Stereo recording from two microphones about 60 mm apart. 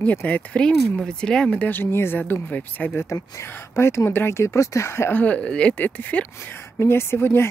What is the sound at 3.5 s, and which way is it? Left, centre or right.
Speech, left.